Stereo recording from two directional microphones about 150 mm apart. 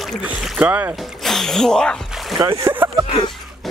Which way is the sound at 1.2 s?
Centre (ahead or behind).